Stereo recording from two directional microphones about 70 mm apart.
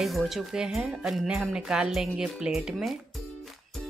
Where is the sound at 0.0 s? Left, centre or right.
Centre.